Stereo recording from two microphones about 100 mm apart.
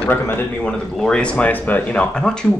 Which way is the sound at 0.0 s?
20° left (ahead or behind).